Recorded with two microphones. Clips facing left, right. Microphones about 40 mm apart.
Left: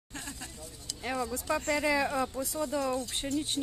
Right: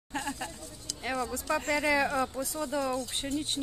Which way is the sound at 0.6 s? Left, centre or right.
Centre.